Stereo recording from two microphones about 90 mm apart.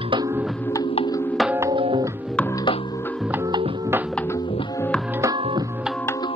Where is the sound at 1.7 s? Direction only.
65° right (ahead or behind).